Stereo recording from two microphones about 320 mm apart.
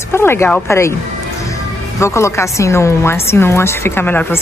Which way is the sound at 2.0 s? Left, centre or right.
Centre.